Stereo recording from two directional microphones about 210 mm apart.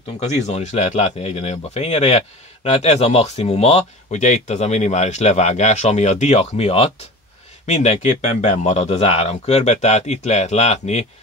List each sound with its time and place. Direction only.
0.0 s speech: 30° left (ahead or behind)